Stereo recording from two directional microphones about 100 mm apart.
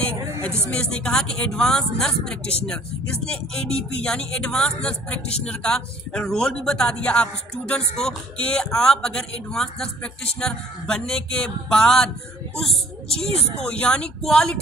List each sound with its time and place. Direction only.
0.7 s a man's voice: 10° left (ahead or behind)